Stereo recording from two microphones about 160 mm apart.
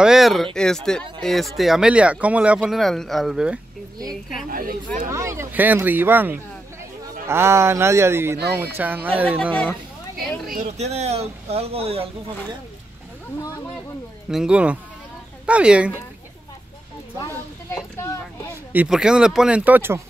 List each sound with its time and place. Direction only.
0.0 s a sound: centre (ahead or behind)
0.6 s speech: 5° left (ahead or behind)
4.5 s speech: 60° right (ahead or behind)
5.1 s speech: 20° right (ahead or behind)
9.4 s speech: 5° left (ahead or behind)
10.4 s speech: 60° right (ahead or behind)
10.8 s speech: 45° right (ahead or behind)
14.3 s speech: 5° right (ahead or behind)
17.9 s speech: 20° left (ahead or behind)
18.7 s speech: 10° right (ahead or behind)